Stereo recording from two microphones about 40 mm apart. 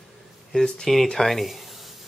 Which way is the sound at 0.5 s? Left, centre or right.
Centre.